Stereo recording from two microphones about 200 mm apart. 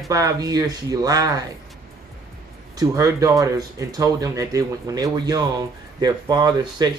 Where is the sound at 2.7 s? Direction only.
15° right (ahead or behind).